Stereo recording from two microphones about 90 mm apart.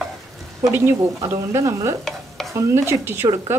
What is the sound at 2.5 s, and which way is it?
Speech, 30° right (ahead or behind).